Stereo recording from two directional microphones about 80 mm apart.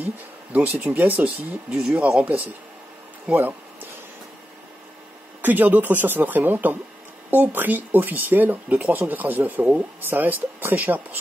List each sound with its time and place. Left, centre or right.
0.0 s speech: centre
1.7 s speech: centre
2.0 s speech: centre
5.4 s speech: right